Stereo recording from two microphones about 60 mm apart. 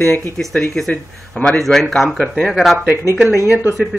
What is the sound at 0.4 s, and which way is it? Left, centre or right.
Speech, centre.